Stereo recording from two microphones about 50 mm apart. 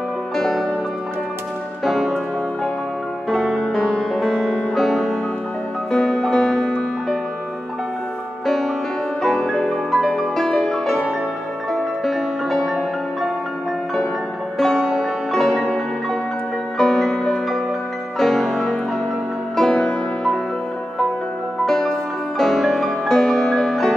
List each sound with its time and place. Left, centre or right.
0.4 s music: centre
1.9 s music: centre
3.7 s music: centre
4.1 s music: centre
8.5 s music: centre
15.0 s music: centre
18.2 s music: centre
21.6 s music: centre